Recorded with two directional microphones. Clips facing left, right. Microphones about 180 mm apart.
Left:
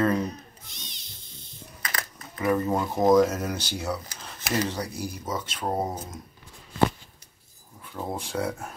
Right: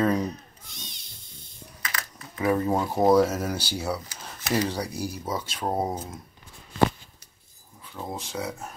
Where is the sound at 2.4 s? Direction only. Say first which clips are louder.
Right 1 dB; 10° right (ahead or behind).